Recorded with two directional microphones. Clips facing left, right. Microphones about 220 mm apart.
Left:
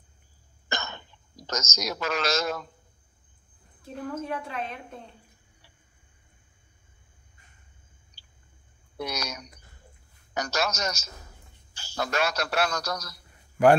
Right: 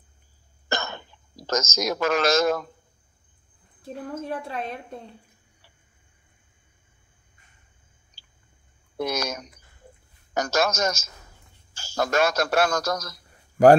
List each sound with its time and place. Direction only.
1.4 s speech: 50° right (ahead or behind)
3.8 s a woman's voice: 35° right (ahead or behind)
8.9 s a man's voice: 45° right (ahead or behind)